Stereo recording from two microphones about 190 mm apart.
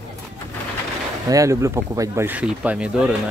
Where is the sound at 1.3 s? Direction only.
15° right (ahead or behind).